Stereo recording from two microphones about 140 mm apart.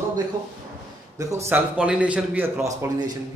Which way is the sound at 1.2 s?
20° right (ahead or behind).